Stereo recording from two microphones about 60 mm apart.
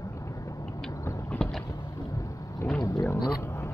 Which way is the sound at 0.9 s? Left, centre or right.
Left.